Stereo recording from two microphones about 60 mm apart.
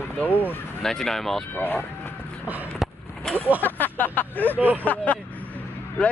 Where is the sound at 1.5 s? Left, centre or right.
Left.